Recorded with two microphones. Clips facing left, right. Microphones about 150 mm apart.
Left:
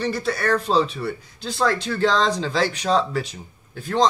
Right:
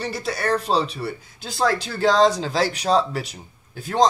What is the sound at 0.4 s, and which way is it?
Speech, 30° right (ahead or behind).